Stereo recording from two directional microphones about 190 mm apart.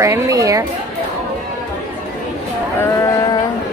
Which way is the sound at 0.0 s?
15° right (ahead or behind).